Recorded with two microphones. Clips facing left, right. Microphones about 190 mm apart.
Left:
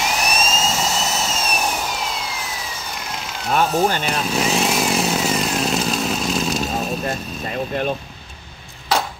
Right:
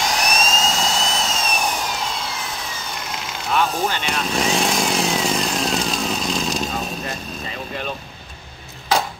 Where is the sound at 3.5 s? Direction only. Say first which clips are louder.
Left 3 dB; 45° left (ahead or behind).